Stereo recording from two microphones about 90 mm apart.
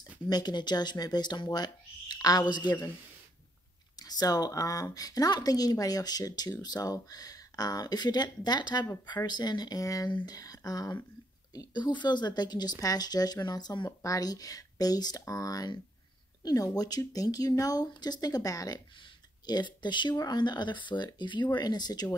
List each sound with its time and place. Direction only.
0.3 s speech: 55° left (ahead or behind)
4.0 s speech: 45° left (ahead or behind)
10.0 s speech: 50° left (ahead or behind)
19.4 s speech: 55° left (ahead or behind)